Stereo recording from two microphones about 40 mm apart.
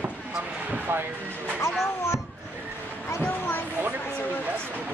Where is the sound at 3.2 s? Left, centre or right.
Left.